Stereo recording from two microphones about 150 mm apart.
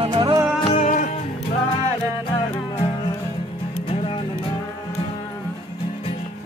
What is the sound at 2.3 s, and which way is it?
Music, 35° left (ahead or behind).